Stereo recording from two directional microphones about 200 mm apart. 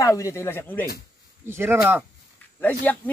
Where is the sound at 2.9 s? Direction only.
10° left (ahead or behind).